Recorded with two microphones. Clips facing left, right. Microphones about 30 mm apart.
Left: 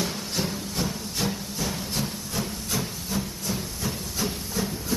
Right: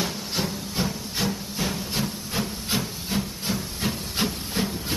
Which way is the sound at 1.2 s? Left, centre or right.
Centre.